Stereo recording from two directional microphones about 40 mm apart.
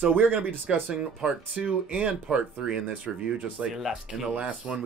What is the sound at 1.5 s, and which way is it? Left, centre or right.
Speech, right.